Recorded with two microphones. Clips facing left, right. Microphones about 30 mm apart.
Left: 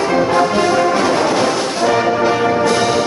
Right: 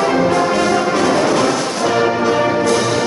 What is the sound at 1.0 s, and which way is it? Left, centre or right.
Music, centre.